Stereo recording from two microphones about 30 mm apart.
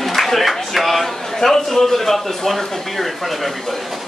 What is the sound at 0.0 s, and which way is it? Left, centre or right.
A man's voice, centre.